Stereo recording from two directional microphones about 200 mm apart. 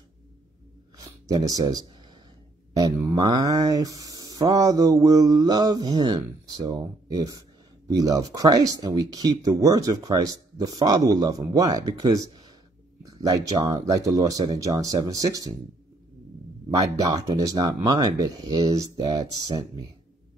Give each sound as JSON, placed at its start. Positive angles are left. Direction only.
{"t": 0.9, "sound": "a sound", "side_deg": -15}
{"t": 2.7, "sound": "speech", "side_deg": -15}
{"t": 16.7, "sound": "speech", "side_deg": -15}